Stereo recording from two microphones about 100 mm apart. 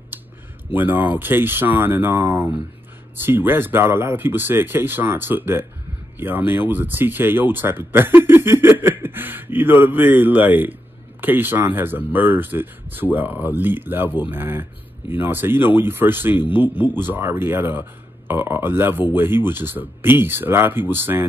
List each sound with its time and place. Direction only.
0.7 s speech: 20° right (ahead or behind)